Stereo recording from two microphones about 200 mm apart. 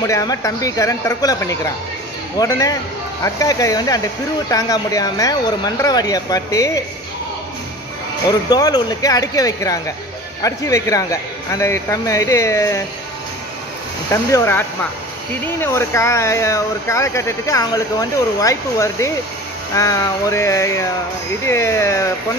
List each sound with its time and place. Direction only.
0.0 s speech: 15° left (ahead or behind)
8.3 s speech: 20° left (ahead or behind)
14.1 s speech: 15° left (ahead or behind)